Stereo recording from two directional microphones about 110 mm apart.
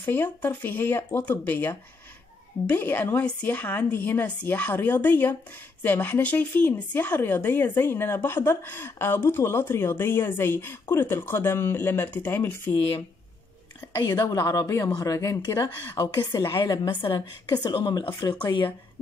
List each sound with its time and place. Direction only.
0.0 s a woman's voice: 15° left (ahead or behind)
13.9 s a woman's voice: 40° left (ahead or behind)